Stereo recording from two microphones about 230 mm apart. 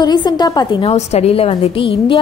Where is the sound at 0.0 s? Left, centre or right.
Centre.